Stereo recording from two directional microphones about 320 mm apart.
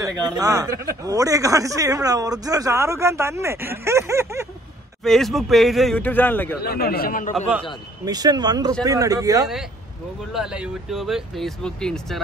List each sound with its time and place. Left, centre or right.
0.0 s speech: centre
6.6 s a man's voice: left
8.0 s speech: centre